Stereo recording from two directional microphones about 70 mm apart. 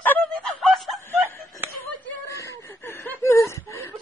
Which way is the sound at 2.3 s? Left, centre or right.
Left.